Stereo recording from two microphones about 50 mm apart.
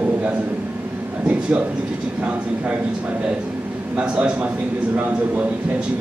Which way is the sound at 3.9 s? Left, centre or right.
Right.